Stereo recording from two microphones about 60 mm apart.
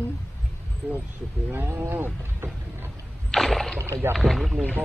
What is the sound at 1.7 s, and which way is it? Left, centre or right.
Speech, right.